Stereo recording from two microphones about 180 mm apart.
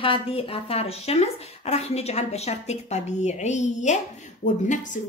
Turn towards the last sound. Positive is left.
turn(degrees=45)  # may be behind; listen again after turning